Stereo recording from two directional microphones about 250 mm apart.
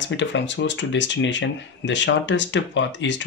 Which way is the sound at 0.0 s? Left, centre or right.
Left.